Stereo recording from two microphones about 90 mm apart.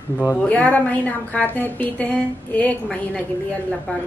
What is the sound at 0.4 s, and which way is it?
A woman's voice, 15° left (ahead or behind).